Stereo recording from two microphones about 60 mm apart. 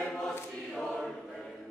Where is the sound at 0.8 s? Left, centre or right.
Centre.